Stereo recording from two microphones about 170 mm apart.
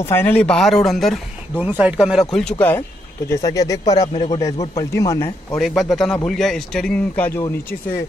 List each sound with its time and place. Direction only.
0.0 s a man's voice: 15° left (ahead or behind)
1.6 s a man's voice: 10° right (ahead or behind)
3.3 s a man's voice: 20° left (ahead or behind)
4.4 s a man's voice: 20° left (ahead or behind)
5.6 s a man's voice: centre (ahead or behind)